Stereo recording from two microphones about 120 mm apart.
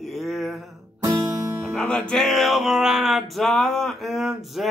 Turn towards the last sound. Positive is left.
turn(degrees=0)  # may be behind; listen again after turning